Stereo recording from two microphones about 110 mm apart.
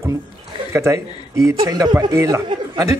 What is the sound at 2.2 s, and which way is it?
Speech, 25° right (ahead or behind).